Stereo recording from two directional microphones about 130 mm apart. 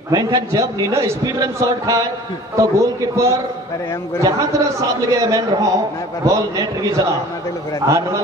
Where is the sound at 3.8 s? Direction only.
20° left (ahead or behind).